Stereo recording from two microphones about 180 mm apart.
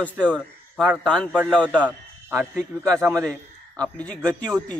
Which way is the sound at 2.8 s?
15° right (ahead or behind).